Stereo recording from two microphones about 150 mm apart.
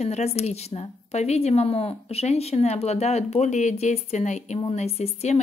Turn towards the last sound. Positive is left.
turn(degrees=45)  # may be behind; listen again after turning